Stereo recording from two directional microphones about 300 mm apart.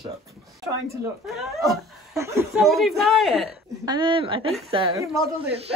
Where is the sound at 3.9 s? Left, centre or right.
Centre.